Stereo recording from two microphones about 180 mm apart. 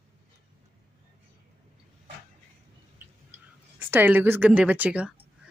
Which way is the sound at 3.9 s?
10° right (ahead or behind).